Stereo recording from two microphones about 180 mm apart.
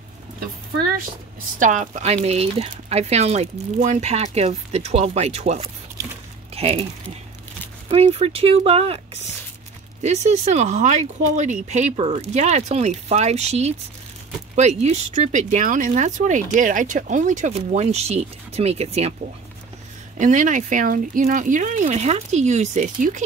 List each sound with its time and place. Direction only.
1.6 s speech: 45° right (ahead or behind)
7.9 s speech: 35° right (ahead or behind)
20.2 s speech: 45° right (ahead or behind)